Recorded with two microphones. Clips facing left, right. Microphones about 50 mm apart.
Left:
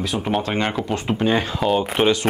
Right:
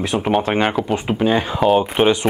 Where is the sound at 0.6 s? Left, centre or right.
Centre.